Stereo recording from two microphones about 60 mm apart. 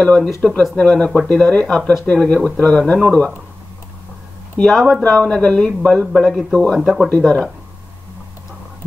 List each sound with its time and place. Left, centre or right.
0.0 s a man's voice: centre
0.4 s speech: centre
0.7 s a man's voice: centre
4.6 s speech: centre
5.5 s a man's voice: centre